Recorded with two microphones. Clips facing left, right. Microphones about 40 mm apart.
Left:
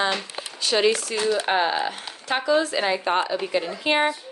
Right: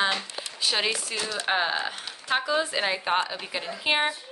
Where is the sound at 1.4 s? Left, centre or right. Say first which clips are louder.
Left 4 dB; centre.